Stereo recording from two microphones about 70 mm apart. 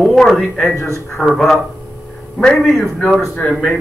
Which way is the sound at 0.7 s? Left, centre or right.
Left.